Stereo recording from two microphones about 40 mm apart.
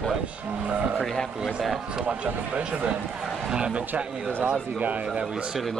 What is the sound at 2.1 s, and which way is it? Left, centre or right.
Speech, right.